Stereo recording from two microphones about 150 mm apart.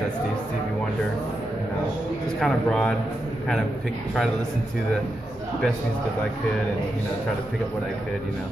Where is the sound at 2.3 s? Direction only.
5° left (ahead or behind).